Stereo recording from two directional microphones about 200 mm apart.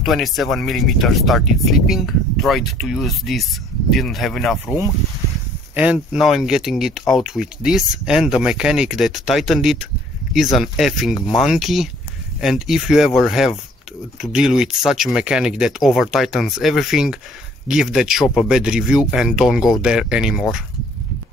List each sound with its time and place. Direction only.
0.0 s speech: centre (ahead or behind)
5.8 s speech: 5° right (ahead or behind)